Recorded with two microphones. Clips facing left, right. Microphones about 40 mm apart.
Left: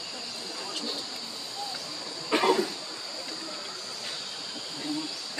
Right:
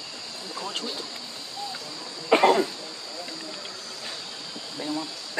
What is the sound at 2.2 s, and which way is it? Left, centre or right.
Cough, right.